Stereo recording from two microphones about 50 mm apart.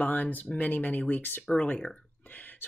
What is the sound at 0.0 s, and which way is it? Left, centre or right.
Speech, left.